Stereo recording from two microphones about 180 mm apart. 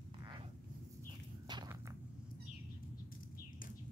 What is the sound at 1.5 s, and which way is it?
Walk, 25° right (ahead or behind).